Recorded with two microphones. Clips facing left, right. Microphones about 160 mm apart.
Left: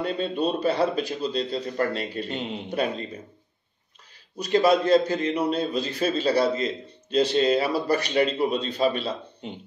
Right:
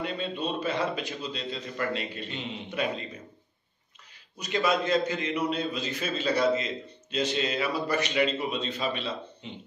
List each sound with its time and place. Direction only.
0.0 s a man's voice: 40° left (ahead or behind)
4.4 s a man's voice: 35° left (ahead or behind)